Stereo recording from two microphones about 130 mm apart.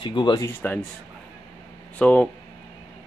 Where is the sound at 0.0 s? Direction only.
35° left (ahead or behind).